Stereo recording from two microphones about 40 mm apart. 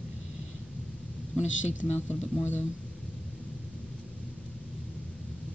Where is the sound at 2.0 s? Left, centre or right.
Left.